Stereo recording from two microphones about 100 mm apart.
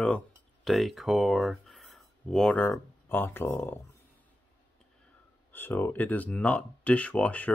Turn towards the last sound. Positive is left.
turn(degrees=15)  # may be behind; listen again after turning